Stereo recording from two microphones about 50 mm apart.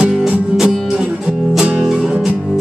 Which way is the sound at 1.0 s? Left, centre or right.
Centre.